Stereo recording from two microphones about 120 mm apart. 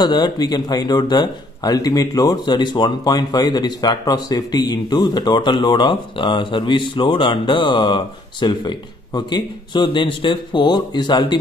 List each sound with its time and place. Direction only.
0.0 s speech: 35° left (ahead or behind)